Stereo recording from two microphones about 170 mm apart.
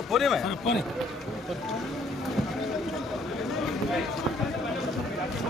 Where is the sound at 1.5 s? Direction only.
Centre (ahead or behind).